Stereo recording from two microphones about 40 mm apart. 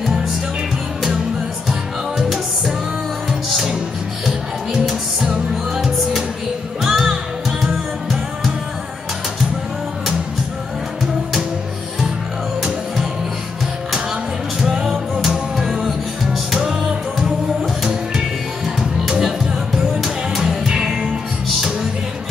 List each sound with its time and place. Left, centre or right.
1.7 s music: centre
5.3 s music: centre
14.6 s music: centre
20.0 s music: centre